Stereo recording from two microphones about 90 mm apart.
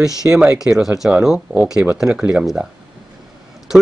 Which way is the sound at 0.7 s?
5° right (ahead or behind).